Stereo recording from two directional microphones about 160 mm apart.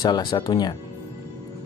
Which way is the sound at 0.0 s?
25° left (ahead or behind).